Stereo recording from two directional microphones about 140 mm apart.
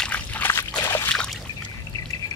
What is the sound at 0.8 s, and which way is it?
Trickle, 20° left (ahead or behind).